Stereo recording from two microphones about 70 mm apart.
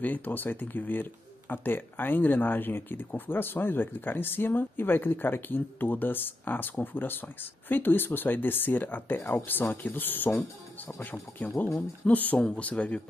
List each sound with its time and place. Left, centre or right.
0.0 s speech: left